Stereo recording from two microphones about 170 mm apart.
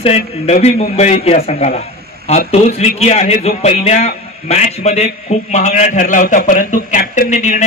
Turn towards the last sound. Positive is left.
turn(degrees=50)  # may be behind; listen again after turning